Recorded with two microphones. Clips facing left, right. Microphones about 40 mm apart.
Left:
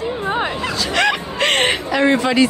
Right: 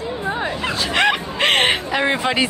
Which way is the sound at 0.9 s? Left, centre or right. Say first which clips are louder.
Even; centre.